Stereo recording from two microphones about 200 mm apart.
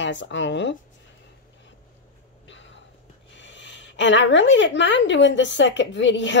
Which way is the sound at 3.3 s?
65° left (ahead or behind).